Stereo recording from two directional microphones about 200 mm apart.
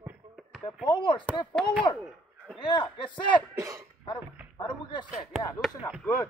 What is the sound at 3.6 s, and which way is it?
Speech, 15° right (ahead or behind).